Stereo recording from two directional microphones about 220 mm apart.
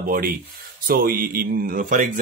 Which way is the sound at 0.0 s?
40° right (ahead or behind).